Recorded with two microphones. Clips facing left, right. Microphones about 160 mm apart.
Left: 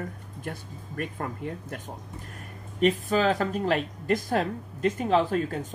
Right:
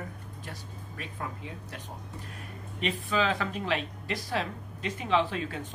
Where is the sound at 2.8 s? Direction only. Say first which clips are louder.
Left 6 dB; 45° left (ahead or behind).